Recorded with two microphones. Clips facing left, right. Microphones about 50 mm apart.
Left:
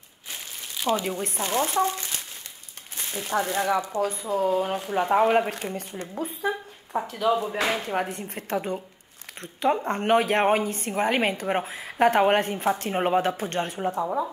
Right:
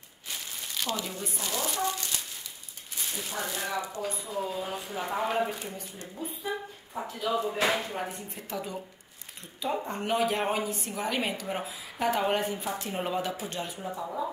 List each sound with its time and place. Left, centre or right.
0.7 s a sound: centre
1.2 s speech: left
3.3 s a woman's voice: left
5.5 s a woman's voice: left